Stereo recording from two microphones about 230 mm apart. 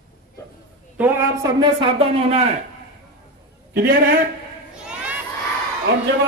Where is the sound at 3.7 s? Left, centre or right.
Right.